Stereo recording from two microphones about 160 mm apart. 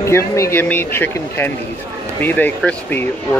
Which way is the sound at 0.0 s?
15° left (ahead or behind).